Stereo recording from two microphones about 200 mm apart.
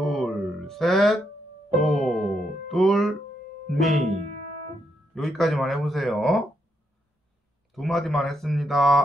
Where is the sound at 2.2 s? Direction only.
50° left (ahead or behind).